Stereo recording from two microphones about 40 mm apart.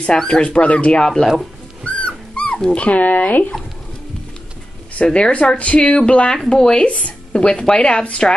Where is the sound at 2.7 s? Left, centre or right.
Left.